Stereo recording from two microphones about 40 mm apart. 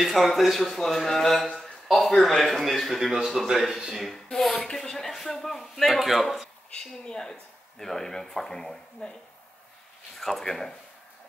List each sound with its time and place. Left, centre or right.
0.0 s a man's voice: centre
4.0 s speech: centre
6.8 s speech: centre
10.1 s speech: centre